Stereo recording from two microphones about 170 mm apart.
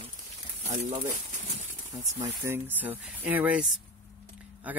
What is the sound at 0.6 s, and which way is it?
Speech, 45° right (ahead or behind).